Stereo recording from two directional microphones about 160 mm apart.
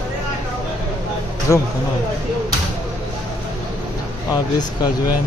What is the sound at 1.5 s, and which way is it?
Speech, 15° left (ahead or behind).